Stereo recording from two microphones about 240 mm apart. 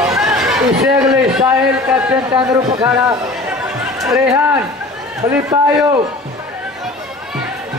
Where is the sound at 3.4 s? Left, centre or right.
Centre.